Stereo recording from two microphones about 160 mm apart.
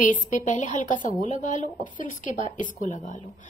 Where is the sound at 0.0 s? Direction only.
55° left (ahead or behind).